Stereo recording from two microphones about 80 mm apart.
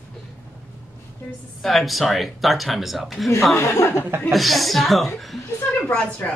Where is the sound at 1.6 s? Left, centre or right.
Centre.